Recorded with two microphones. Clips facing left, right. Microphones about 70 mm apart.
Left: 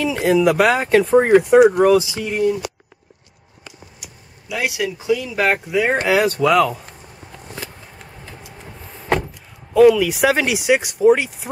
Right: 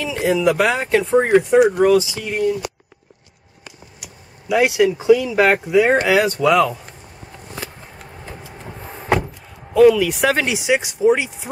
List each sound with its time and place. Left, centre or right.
0.0 s speech: centre
4.5 s speech: right
4.9 s speech: centre
8.3 s vehicle: right
9.8 s speech: centre